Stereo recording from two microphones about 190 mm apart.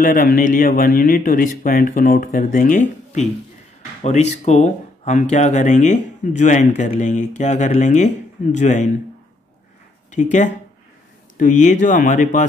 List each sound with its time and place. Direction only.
0.0 s speech: 45° left (ahead or behind)
10.1 s speech: 40° left (ahead or behind)